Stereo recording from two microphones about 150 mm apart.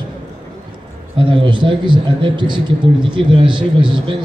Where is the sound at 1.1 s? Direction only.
35° right (ahead or behind).